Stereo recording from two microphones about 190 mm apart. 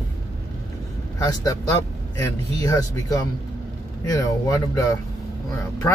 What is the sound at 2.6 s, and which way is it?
Speech, 20° left (ahead or behind).